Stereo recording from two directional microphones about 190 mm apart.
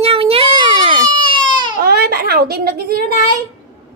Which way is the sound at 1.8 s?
55° right (ahead or behind).